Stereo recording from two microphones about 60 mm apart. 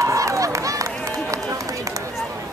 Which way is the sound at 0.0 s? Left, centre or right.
Right.